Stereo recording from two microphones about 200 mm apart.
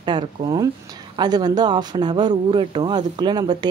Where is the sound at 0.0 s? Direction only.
20° right (ahead or behind).